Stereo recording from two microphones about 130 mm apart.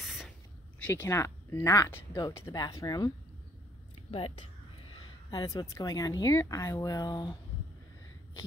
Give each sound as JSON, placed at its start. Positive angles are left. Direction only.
{"t": 0.0, "sound": "a sound", "side_deg": 0}
{"t": 0.9, "sound": "speech", "side_deg": 20}
{"t": 4.1, "sound": "speech", "side_deg": 45}
{"t": 5.3, "sound": "speech", "side_deg": 35}